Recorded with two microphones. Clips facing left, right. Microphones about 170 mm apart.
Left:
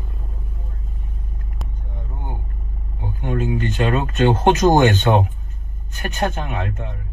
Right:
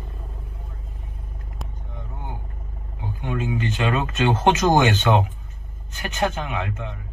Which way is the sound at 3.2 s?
50° left (ahead or behind).